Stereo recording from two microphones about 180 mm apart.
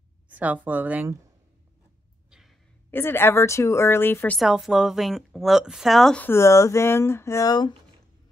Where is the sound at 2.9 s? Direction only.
15° left (ahead or behind).